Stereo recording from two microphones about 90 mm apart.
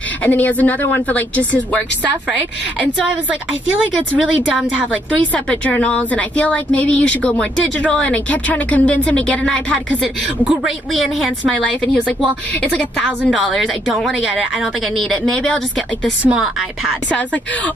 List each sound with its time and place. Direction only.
0.2 s a woman's voice: 20° left (ahead or behind)
3.1 s a woman's voice: 15° right (ahead or behind)
5.1 s a woman's voice: 15° left (ahead or behind)
10.9 s a woman's voice: centre (ahead or behind)
11.4 s a woman's voice: 15° left (ahead or behind)
13.3 s a woman's voice: centre (ahead or behind)
16.3 s a woman's voice: 10° right (ahead or behind)